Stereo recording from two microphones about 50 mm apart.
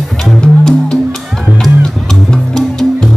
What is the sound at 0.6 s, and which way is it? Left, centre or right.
Music, centre.